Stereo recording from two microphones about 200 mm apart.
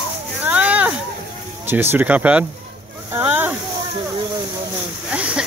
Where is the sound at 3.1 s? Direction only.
10° right (ahead or behind).